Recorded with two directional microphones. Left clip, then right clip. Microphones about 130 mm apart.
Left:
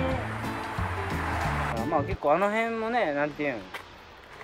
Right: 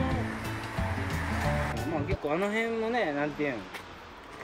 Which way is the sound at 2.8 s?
35° left (ahead or behind).